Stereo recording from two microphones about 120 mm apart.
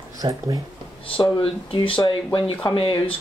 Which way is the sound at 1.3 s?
45° left (ahead or behind).